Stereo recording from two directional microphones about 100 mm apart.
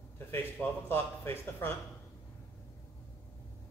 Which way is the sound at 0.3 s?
20° left (ahead or behind).